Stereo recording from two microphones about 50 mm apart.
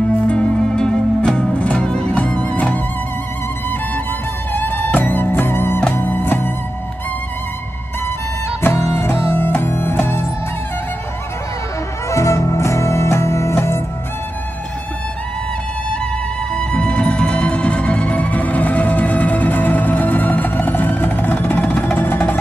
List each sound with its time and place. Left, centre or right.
0.3 s music: centre; by 2.8 s left
4.6 s music: left
8.6 s music: left
12.1 s music: left
16.5 s music: left